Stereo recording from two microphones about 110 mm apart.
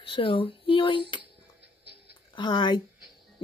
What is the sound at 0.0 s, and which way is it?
Speech, 50° left (ahead or behind).